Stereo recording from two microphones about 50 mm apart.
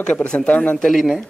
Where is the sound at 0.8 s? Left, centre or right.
Centre.